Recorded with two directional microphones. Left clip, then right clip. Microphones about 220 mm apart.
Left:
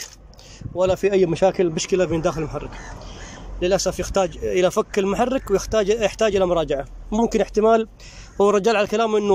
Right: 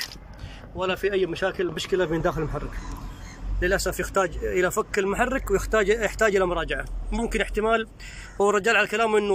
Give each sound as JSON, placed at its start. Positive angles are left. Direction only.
{"t": 0.7, "sound": "speech", "side_deg": 25}
{"t": 3.6, "sound": "speech", "side_deg": 15}